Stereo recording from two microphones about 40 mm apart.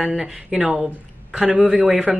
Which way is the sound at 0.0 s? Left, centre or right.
Centre.